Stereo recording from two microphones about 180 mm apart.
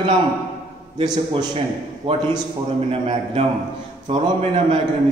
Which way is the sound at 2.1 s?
35° right (ahead or behind).